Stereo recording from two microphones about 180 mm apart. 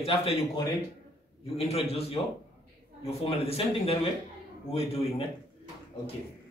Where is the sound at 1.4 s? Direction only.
35° left (ahead or behind).